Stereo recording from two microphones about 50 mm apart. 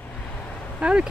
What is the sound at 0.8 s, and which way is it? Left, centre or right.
Speech, right.